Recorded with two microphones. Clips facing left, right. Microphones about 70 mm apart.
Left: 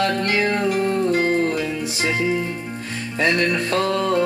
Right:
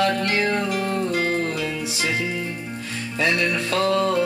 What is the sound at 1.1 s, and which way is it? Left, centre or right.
Music, left.